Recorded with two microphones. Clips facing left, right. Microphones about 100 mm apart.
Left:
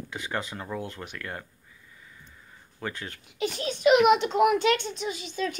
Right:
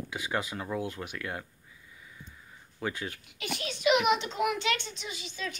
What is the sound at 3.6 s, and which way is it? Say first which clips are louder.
A child's voice: left 6 dB; 40° left (ahead or behind).